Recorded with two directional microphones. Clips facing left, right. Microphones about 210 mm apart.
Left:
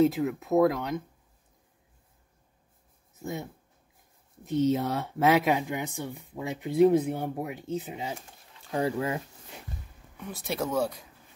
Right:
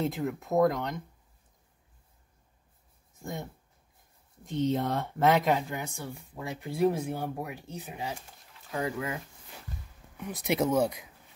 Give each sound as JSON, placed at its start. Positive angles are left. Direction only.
{"t": 0.0, "sound": "speech", "side_deg": 0}
{"t": 3.2, "sound": "speech", "side_deg": 5}
{"t": 4.5, "sound": "speech", "side_deg": 10}
{"t": 8.7, "sound": "speech", "side_deg": 30}
{"t": 10.1, "sound": "speech", "side_deg": -15}